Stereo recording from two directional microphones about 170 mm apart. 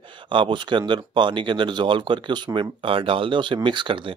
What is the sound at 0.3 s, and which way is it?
Speech, 30° right (ahead or behind).